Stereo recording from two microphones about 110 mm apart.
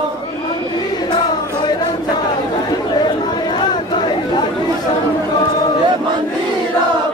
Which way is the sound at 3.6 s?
40° left (ahead or behind).